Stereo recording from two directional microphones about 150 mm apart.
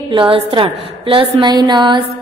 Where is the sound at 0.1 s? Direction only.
35° right (ahead or behind).